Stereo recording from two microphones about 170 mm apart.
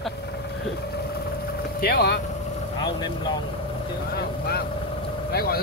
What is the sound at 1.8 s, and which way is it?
Speech, 65° left (ahead or behind).